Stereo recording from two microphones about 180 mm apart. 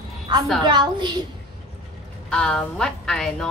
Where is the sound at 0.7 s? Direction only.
25° right (ahead or behind).